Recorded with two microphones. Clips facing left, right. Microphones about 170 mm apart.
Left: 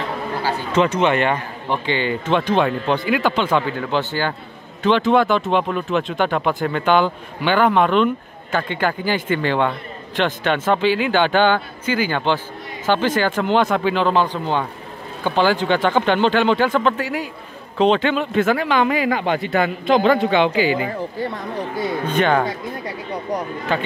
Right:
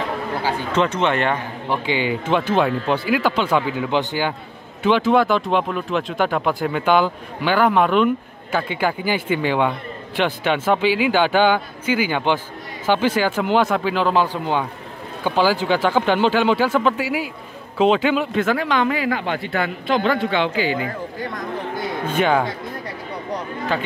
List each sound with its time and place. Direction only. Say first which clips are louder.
0.7 s a man's voice: left 3 dB; 10° left (ahead or behind)
1.9 s a man's voice: even; 10° right (ahead or behind)
18.9 s a man's voice: left 2 dB; 20° left (ahead or behind)
22.0 s speech: even; 5° right (ahead or behind)
23.7 s a man's voice: left 2 dB; centre (ahead or behind)